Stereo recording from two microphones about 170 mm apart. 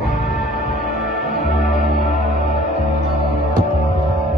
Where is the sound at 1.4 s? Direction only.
45° left (ahead or behind).